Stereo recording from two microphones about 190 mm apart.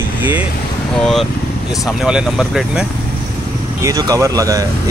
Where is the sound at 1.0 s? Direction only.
Centre (ahead or behind).